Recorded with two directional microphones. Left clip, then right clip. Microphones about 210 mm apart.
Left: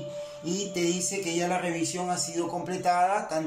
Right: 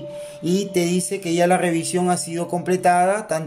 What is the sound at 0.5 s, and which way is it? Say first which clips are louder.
Speech: right 8 dB; 55° right (ahead or behind).